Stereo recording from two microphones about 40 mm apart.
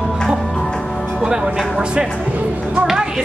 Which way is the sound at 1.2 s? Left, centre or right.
Centre.